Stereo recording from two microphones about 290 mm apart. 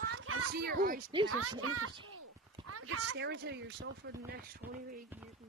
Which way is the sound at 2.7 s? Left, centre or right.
Right.